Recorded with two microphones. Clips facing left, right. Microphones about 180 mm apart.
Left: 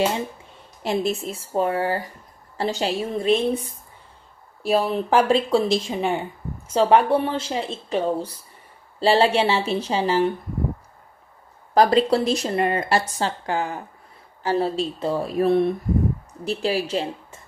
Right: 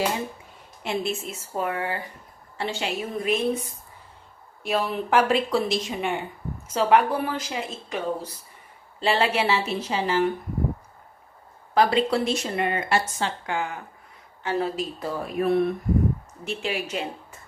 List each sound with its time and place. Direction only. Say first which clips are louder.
0.8 s speech: left 4 dB; 35° left (ahead or behind)
11.7 s a woman's voice: left 4 dB; 40° left (ahead or behind)